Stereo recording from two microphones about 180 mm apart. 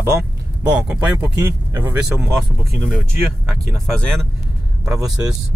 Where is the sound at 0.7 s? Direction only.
10° right (ahead or behind).